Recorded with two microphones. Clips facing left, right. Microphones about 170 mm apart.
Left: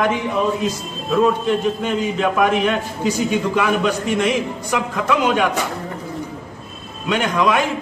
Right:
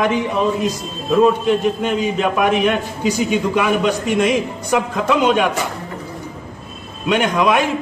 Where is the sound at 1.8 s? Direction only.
15° right (ahead or behind).